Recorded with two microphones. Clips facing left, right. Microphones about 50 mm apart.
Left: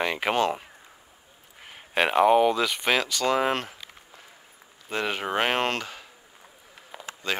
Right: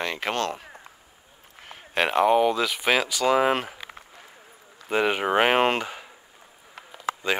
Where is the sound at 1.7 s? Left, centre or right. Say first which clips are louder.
Even; centre.